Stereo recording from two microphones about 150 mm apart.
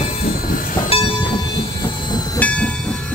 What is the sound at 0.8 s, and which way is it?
Train, 35° left (ahead or behind).